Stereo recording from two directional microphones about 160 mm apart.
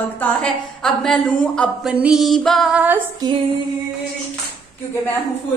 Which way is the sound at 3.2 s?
25° right (ahead or behind).